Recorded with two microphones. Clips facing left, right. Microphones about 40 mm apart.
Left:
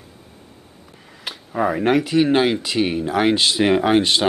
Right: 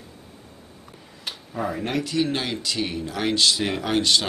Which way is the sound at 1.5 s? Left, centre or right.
Left.